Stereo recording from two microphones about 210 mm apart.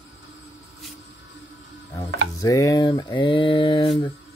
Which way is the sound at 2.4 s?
15° left (ahead or behind).